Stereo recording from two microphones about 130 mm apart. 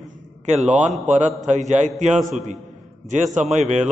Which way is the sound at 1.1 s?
65° right (ahead or behind).